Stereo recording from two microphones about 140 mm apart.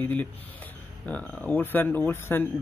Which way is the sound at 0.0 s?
10° left (ahead or behind).